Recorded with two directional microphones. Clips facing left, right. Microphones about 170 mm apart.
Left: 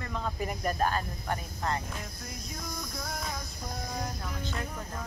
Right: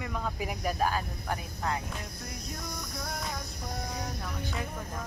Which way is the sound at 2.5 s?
70° right (ahead or behind).